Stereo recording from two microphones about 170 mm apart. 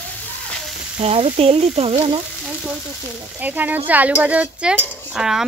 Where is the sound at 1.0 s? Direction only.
35° right (ahead or behind).